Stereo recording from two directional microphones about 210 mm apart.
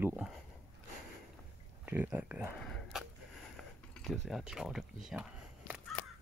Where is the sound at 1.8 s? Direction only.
10° right (ahead or behind).